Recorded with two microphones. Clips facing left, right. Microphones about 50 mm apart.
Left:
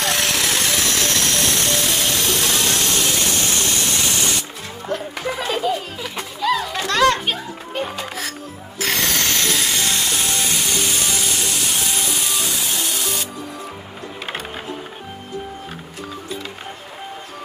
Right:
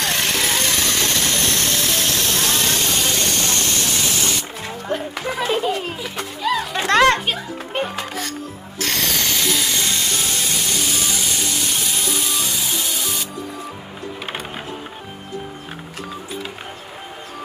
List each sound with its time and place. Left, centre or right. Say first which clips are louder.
0.0 s music: even; centre
2.8 s hiss: even; centre
4.8 s music: even; right
6.4 s music: left 1 dB; centre
6.8 s music: right 3 dB; right
8.7 s music: left 1 dB; centre